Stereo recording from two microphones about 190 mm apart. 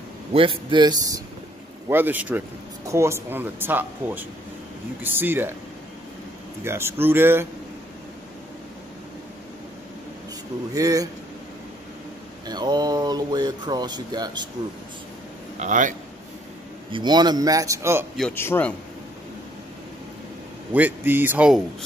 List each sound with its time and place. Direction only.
0.3 s speech: 30° right (ahead or behind); by 5.5 s 10° right (ahead or behind)
6.6 s speech: 15° right (ahead or behind)
10.7 s speech: 20° right (ahead or behind)
12.4 s speech: 20° right (ahead or behind)
15.6 s a man's voice: 40° right (ahead or behind)
16.9 s speech: 20° right (ahead or behind)
18.3 s speech: 10° left (ahead or behind)
20.7 s speech: 10° right (ahead or behind)